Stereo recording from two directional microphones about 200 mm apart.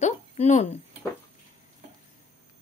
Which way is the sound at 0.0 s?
35° left (ahead or behind).